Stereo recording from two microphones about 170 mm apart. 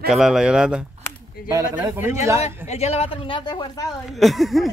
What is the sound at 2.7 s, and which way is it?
Speech, 40° left (ahead or behind).